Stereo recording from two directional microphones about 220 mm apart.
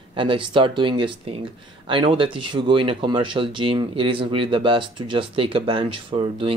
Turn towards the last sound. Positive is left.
turn(degrees=-25)  # may be behind; listen again after turning